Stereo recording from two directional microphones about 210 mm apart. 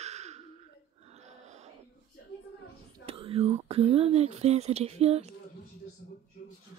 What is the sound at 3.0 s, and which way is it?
Whispering, 25° right (ahead or behind).